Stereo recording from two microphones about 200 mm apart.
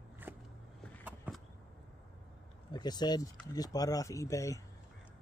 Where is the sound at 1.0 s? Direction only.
5° right (ahead or behind).